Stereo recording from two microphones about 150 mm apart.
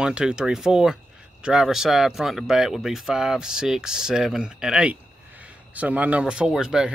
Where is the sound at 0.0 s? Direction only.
5° right (ahead or behind).